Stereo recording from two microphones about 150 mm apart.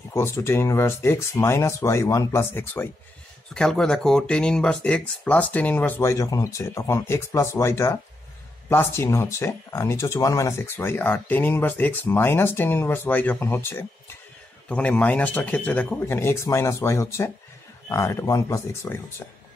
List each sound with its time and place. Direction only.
0.1 s speech: 20° left (ahead or behind)